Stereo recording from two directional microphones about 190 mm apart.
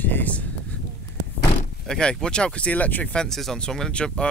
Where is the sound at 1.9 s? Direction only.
5° left (ahead or behind).